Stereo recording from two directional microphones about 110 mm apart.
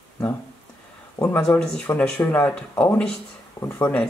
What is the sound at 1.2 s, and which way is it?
Speech, 25° left (ahead or behind).